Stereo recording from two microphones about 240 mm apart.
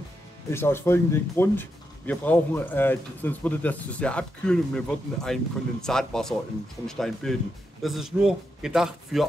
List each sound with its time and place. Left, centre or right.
0.5 s a man's voice: centre